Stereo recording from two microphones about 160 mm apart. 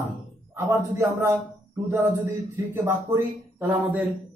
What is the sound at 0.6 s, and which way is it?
Speech, 20° right (ahead or behind).